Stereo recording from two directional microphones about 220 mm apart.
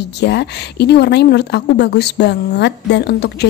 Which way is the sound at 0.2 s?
50° left (ahead or behind).